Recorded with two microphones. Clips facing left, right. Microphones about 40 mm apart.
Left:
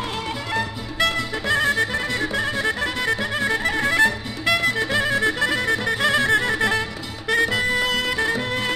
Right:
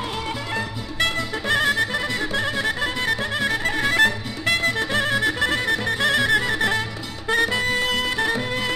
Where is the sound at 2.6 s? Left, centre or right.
Left.